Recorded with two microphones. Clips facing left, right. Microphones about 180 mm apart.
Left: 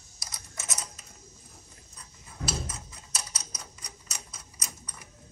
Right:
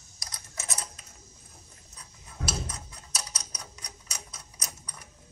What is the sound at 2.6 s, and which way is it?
Typewriter, 5° left (ahead or behind).